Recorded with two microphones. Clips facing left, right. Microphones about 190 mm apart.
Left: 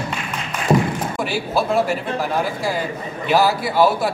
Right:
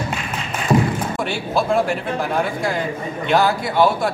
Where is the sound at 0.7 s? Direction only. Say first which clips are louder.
Even; 20° left (ahead or behind).